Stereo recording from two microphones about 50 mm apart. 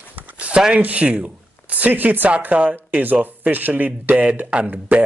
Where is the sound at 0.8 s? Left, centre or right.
Right.